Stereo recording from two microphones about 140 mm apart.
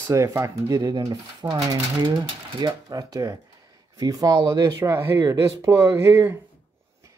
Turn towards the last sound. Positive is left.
turn(degrees=-20)  # may be behind; listen again after turning